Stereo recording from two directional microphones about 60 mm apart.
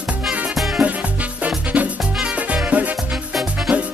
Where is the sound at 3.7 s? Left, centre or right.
Centre.